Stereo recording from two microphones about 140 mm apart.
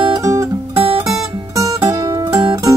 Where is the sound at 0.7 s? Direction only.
45° right (ahead or behind).